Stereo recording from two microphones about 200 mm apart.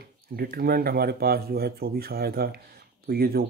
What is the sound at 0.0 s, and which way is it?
Speech, 50° right (ahead or behind).